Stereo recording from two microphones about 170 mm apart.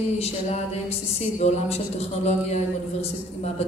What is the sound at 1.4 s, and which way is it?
Speech, 40° left (ahead or behind).